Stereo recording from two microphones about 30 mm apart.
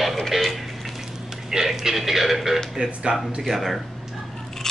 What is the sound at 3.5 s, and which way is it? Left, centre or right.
Speech, centre.